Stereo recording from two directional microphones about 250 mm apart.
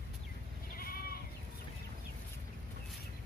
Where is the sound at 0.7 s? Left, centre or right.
Left.